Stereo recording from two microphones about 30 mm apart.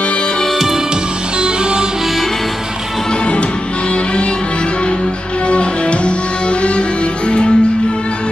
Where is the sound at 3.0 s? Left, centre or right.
Left.